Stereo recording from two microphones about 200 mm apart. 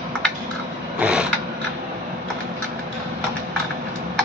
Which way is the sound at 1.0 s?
5° right (ahead or behind).